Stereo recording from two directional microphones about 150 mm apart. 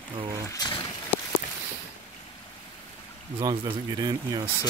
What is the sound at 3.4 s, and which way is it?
Speech, 30° right (ahead or behind).